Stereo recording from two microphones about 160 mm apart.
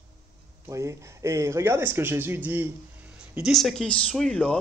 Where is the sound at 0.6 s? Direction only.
20° right (ahead or behind).